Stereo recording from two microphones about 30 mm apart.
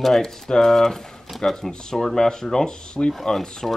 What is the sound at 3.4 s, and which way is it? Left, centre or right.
Speech, centre.